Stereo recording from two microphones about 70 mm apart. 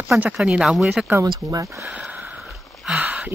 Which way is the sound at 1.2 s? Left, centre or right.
Right.